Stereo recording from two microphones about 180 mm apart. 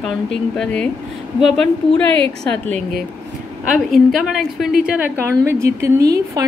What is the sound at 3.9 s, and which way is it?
A woman's voice, centre (ahead or behind).